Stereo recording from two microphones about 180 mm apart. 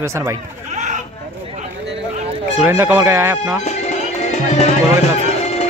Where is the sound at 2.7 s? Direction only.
15° right (ahead or behind).